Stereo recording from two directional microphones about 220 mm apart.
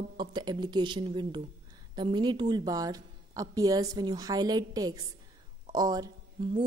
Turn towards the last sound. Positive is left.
turn(degrees=-20)  # may be behind; listen again after turning